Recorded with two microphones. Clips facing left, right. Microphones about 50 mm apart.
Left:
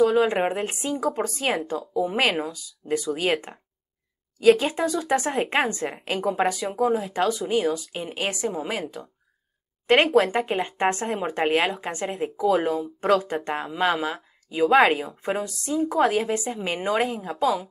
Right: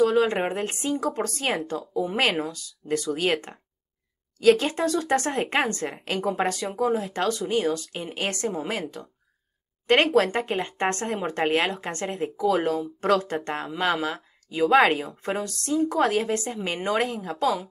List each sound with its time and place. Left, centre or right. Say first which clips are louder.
0.0 s speech: left 1 dB; centre
6.5 s speech: left 2 dB; centre